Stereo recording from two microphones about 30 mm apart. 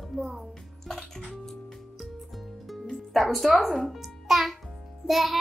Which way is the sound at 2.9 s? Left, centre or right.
Centre.